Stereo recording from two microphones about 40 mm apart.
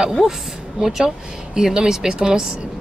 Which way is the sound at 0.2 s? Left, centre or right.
Centre.